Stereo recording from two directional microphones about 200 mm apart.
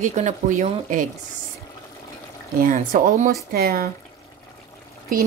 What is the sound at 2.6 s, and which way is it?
Speech, 40° right (ahead or behind).